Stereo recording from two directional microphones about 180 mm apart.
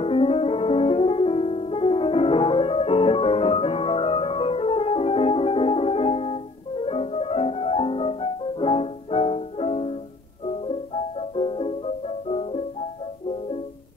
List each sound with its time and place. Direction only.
0.0 s music: 30° left (ahead or behind)